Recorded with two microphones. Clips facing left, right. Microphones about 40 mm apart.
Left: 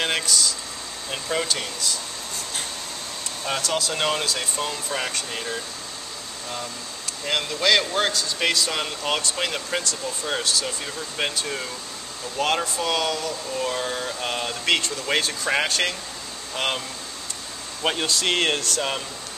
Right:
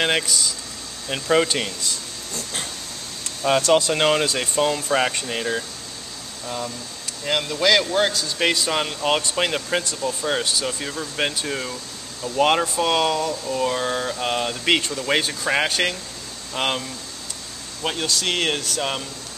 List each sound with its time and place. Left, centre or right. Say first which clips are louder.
0.0 s speech: right 2 dB; centre
3.8 s speech: right 5 dB; right
7.2 s speech: right 2 dB; centre
17.8 s speech: left 1 dB; centre